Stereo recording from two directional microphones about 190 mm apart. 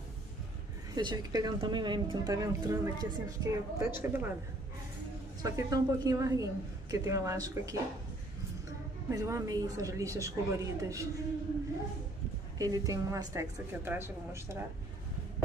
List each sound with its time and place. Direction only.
0.9 s speech: 20° right (ahead or behind)
5.4 s a woman's voice: 20° right (ahead or behind)
9.1 s a woman's voice: 20° right (ahead or behind)
12.5 s a woman's voice: 20° right (ahead or behind)